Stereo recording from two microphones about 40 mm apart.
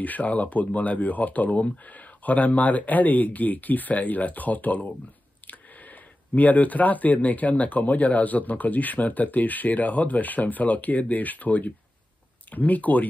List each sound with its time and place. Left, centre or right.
0.0 s speech: left